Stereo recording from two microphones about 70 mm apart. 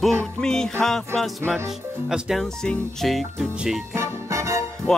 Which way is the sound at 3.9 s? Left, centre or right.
Right.